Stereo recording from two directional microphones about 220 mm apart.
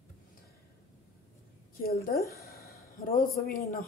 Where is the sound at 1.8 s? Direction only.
40° left (ahead or behind).